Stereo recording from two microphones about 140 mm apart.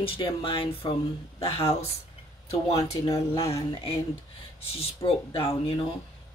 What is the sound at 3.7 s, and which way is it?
Speech, 40° left (ahead or behind).